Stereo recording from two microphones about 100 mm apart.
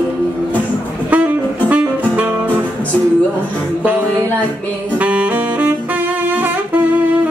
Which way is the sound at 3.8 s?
15° right (ahead or behind).